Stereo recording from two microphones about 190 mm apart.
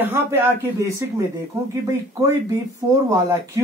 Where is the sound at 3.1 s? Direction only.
15° right (ahead or behind).